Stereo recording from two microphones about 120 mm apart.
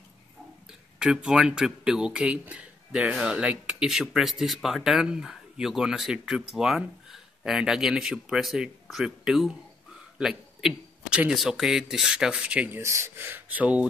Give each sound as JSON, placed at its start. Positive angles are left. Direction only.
{"t": 0.7, "sound": "a man's voice", "side_deg": -5}
{"t": 12.8, "sound": "a man's voice", "side_deg": -25}